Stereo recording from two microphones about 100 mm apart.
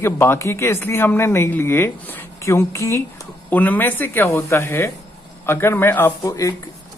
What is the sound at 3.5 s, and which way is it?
Speech, 15° left (ahead or behind).